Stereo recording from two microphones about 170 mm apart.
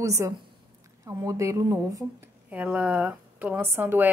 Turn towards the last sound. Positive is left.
turn(degrees=-10)  # may be behind; listen again after turning